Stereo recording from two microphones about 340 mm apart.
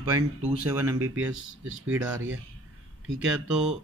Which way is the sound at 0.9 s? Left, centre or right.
Right.